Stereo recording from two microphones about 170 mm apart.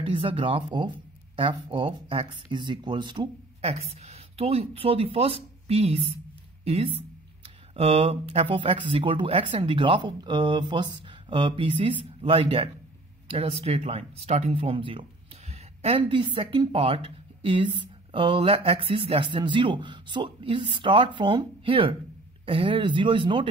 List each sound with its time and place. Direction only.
0.0 s speech: 30° right (ahead or behind)